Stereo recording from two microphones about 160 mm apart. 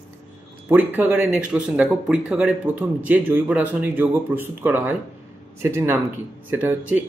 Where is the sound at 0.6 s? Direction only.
10° right (ahead or behind).